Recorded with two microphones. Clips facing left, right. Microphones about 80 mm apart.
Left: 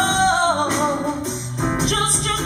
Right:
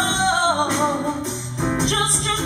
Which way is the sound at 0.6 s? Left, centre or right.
Centre.